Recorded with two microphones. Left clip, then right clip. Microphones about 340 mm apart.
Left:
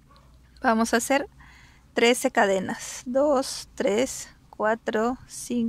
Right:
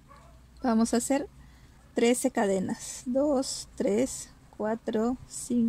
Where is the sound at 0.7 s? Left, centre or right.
Left.